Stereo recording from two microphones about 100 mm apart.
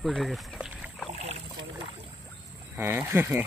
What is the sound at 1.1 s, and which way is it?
Boat, 90° right.